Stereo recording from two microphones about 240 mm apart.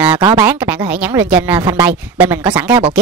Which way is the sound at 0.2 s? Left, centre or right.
Centre.